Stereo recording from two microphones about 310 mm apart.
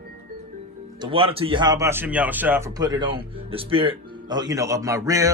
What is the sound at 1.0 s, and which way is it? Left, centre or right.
Speech, centre.